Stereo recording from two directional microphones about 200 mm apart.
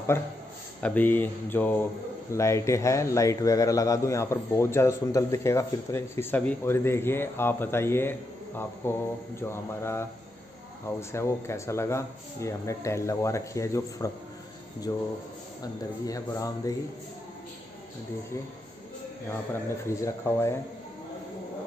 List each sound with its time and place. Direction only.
0.8 s a man's voice: 10° left (ahead or behind)
19.5 s a man's voice: 15° left (ahead or behind)